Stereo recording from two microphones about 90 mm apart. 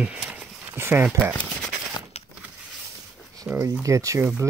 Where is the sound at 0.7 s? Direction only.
25° right (ahead or behind).